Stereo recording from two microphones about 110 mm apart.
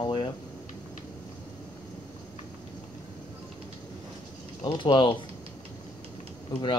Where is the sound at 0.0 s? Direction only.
45° left (ahead or behind).